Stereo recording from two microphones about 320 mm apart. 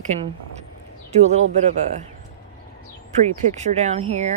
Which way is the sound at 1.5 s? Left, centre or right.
Right.